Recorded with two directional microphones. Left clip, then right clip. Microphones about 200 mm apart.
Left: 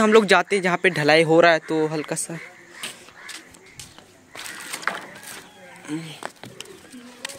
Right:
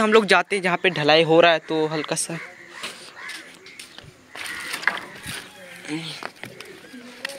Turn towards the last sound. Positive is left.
turn(degrees=20)  # may be behind; listen again after turning